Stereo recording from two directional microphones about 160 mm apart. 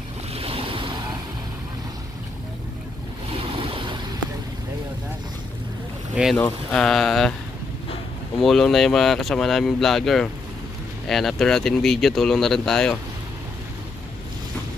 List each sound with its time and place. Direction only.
0.3 s waves: 35° right (ahead or behind)
3.3 s vehicle: 35° right (ahead or behind)
6.3 s speech: 5° left (ahead or behind)
8.4 s speech: centre (ahead or behind)